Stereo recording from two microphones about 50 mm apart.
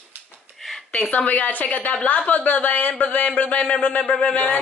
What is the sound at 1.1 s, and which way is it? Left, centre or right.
A woman's voice, left.